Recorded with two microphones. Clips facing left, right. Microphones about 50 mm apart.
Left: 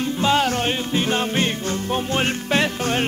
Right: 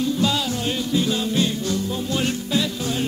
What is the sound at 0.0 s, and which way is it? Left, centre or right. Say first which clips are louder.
Music: left 3 dB; left.